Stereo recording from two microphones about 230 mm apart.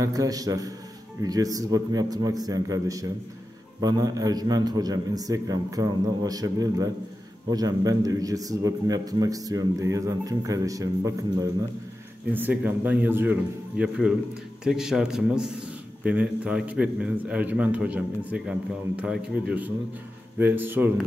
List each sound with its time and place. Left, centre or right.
0.0 s a man's voice: centre